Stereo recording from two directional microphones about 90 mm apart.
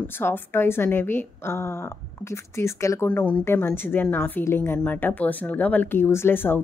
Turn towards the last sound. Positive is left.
turn(degrees=25)  # may be behind; listen again after turning